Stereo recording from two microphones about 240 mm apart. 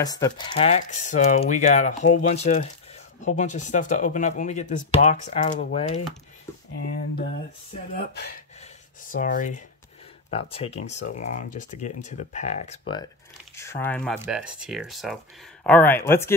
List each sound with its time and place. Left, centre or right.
0.0 s speech: centre
7.9 s speech: left; by 16.3 s centre